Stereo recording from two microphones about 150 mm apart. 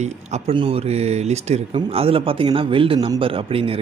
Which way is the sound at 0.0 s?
50° right (ahead or behind).